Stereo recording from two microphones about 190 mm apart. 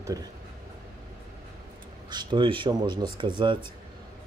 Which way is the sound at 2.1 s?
25° right (ahead or behind).